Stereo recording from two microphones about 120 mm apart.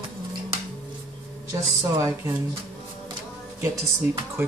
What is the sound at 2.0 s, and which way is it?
Speech, 25° right (ahead or behind).